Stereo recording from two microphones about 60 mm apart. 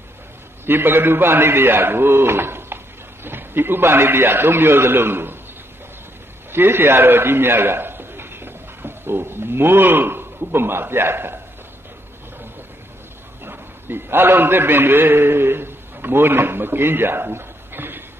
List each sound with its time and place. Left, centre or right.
0.7 s a man's voice: right
6.5 s a man's voice: right
13.4 s a man's voice: right